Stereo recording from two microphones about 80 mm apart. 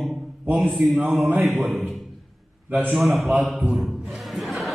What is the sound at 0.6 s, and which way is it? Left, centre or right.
A man's voice, centre.